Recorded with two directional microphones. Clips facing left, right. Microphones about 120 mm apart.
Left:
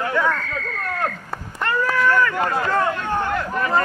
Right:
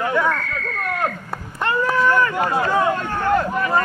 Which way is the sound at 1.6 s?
20° right (ahead or behind).